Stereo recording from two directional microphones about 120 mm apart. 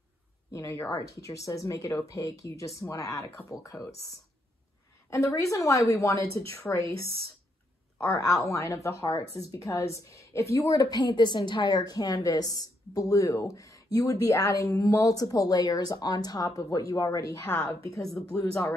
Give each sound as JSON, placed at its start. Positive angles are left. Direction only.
{"t": 0.5, "sound": "a woman's voice", "side_deg": 25}
{"t": 8.0, "sound": "a woman's voice", "side_deg": 25}
{"t": 17.5, "sound": "a woman's voice", "side_deg": 15}
{"t": 18.1, "sound": "a woman's voice", "side_deg": 25}